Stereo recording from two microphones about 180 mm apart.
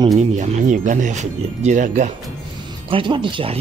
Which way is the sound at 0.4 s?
45° right (ahead or behind).